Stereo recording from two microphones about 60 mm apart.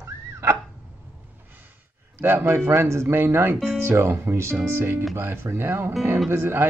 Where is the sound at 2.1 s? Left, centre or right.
Right.